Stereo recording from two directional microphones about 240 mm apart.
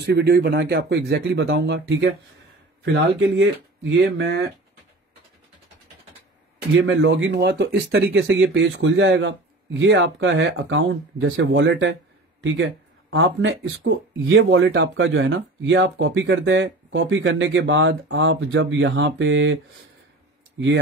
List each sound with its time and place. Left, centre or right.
0.0 s speech: right
6.7 s speech: right
13.1 s speech: right